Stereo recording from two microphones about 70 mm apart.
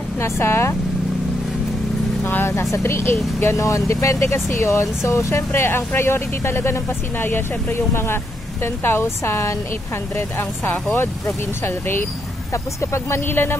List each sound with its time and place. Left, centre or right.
0.2 s speech: left
2.2 s speech: left